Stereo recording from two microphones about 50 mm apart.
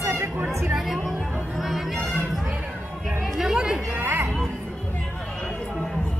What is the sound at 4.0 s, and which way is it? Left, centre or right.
Speech, right.